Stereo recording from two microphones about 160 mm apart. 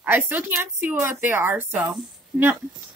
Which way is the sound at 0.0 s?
10° right (ahead or behind).